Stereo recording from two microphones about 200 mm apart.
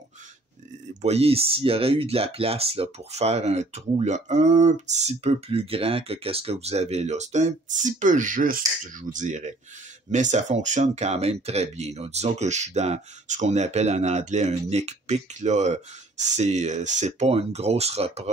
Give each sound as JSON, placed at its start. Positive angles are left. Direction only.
{"t": 1.0, "sound": "speech", "side_deg": -30}